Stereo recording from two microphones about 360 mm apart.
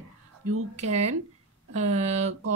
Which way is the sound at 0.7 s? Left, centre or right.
Centre.